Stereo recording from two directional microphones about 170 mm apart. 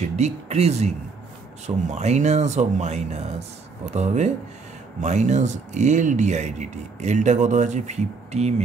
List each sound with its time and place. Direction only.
0.1 s speech: 40° right (ahead or behind)